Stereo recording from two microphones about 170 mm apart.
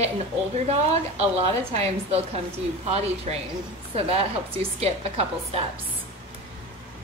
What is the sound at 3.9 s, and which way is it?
A woman's voice, 35° right (ahead or behind).